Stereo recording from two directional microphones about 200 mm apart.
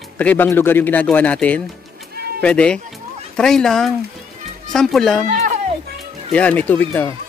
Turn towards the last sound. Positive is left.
turn(degrees=10)  # may be behind; listen again after turning